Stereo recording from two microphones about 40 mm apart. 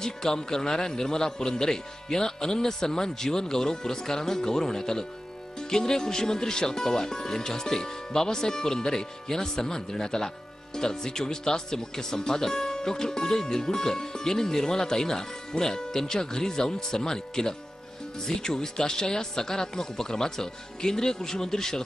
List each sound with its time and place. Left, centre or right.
0.0 s speech: centre